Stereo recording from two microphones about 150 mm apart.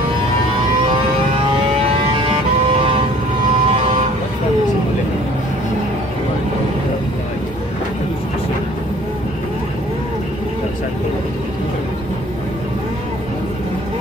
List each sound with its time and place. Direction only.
3.6 s vehicle: 40° right (ahead or behind)